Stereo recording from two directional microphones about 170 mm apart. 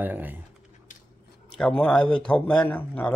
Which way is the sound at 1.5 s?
5° left (ahead or behind).